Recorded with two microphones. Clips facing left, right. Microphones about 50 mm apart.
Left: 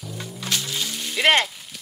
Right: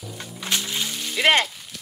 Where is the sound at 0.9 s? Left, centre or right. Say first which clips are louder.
Even; centre.